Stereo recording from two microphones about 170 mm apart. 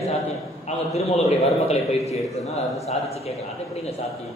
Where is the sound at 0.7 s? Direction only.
40° left (ahead or behind).